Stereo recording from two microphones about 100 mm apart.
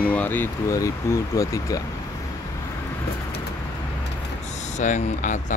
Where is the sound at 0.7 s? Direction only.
30° left (ahead or behind).